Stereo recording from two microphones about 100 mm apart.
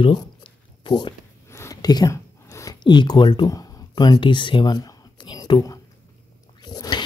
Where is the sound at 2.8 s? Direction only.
50° left (ahead or behind).